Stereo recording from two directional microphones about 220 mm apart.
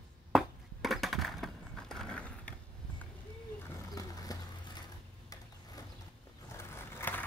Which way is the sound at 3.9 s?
15° left (ahead or behind).